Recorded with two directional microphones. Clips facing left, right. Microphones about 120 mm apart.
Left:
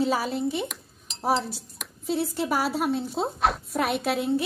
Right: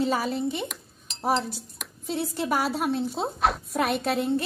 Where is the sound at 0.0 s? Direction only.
5° left (ahead or behind).